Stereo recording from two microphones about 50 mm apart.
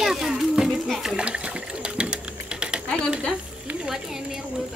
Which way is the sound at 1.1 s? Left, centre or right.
Centre.